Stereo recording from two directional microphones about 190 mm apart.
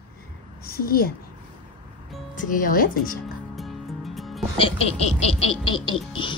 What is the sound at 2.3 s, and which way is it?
Speech, 45° left (ahead or behind).